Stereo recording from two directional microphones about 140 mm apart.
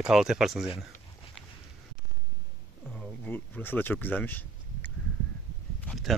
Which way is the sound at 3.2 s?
15° left (ahead or behind).